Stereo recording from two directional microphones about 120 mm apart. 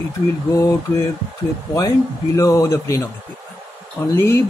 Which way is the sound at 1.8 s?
30° left (ahead or behind).